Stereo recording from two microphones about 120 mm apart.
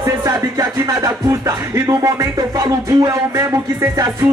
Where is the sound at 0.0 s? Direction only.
25° right (ahead or behind).